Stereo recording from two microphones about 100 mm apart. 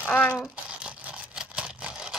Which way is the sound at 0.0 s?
15° left (ahead or behind).